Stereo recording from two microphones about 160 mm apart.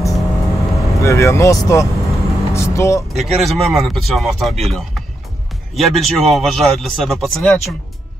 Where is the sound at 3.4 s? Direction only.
Centre (ahead or behind).